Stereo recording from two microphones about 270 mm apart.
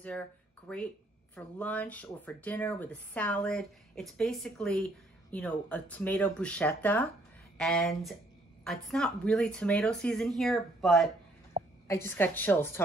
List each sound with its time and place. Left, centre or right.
0.7 s speech: centre
11.6 s a sound: centre
11.9 s a woman's voice: centre